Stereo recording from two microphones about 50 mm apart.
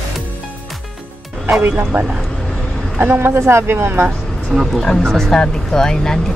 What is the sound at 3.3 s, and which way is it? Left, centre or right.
Speech, right.